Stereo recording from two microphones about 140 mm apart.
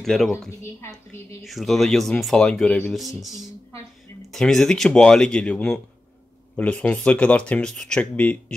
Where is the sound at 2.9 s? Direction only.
Centre (ahead or behind).